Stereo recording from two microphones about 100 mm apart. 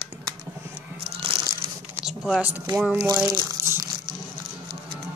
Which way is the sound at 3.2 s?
35° right (ahead or behind).